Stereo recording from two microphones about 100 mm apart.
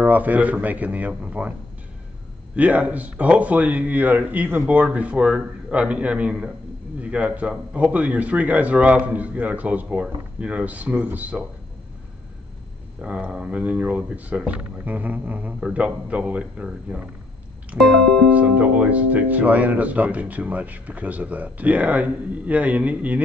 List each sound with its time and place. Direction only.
0.0 s speech: 15° right (ahead or behind)
2.5 s speech: 15° right (ahead or behind)
13.0 s speech: 10° right (ahead or behind)
17.7 s music: centre (ahead or behind)
18.3 s speech: 15° right (ahead or behind)